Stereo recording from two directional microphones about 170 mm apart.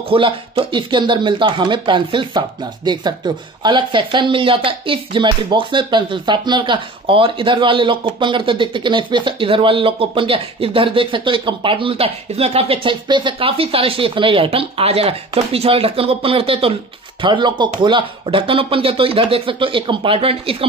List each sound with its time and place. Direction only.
0.1 s speech: 30° right (ahead or behind)